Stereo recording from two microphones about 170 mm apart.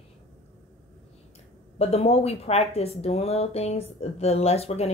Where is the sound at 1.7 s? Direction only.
40° left (ahead or behind).